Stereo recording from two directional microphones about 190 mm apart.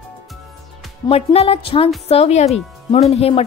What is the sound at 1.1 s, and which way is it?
Speech, 30° left (ahead or behind).